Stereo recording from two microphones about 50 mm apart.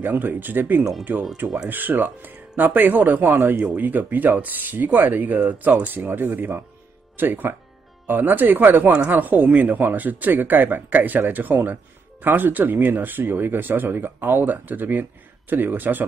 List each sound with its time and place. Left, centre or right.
0.0 s speech: right